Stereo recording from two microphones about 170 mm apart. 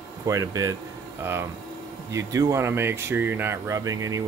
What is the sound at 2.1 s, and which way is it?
Speech, 20° right (ahead or behind).